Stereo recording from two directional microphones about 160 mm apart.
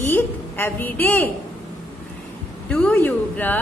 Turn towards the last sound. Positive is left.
turn(degrees=10)  # may be behind; listen again after turning